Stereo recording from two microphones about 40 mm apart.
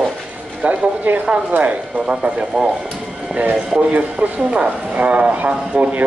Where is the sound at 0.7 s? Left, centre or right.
Right.